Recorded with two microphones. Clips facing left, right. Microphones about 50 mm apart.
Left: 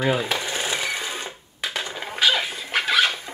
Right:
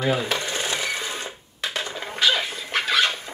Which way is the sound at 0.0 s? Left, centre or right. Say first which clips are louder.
Left 1 dB; centre.